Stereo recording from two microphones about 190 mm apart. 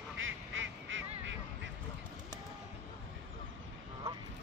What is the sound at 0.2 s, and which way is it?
Quack, 90° right.